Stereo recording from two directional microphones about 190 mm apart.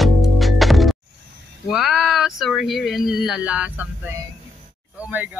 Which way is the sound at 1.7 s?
Centre (ahead or behind).